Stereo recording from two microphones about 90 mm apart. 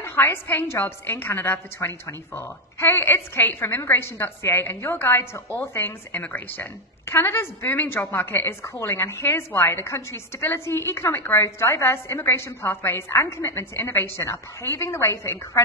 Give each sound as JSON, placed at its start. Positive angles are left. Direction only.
{"t": 0.0, "sound": "a woman's voice", "side_deg": 25}